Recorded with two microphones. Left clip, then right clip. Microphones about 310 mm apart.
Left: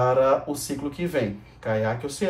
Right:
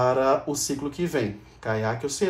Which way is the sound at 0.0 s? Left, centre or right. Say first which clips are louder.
Left 1 dB; centre.